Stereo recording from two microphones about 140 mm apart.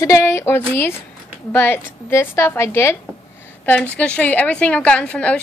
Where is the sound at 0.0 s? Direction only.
20° left (ahead or behind).